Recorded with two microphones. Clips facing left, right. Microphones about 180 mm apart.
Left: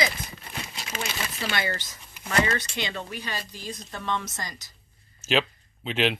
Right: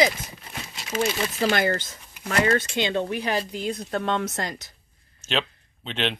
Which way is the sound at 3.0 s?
65° right (ahead or behind).